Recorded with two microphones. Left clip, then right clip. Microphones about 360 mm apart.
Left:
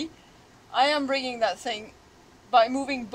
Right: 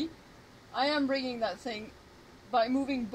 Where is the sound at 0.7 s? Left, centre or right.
Left.